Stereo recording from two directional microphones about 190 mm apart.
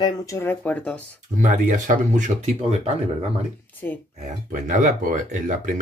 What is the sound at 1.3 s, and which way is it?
Speech, 40° right (ahead or behind).